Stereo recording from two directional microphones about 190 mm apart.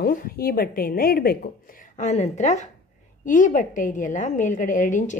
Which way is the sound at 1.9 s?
35° left (ahead or behind).